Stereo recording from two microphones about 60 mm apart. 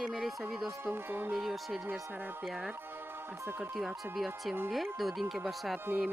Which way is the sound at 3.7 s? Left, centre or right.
Centre.